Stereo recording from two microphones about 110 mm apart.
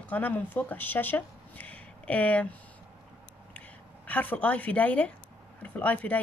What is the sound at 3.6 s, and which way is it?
A woman's voice, 15° left (ahead or behind).